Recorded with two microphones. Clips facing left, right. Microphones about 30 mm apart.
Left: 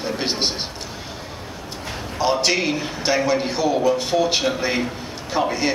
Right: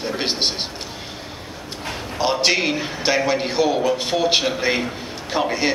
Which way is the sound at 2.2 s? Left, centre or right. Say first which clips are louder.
Right 1 dB; centre.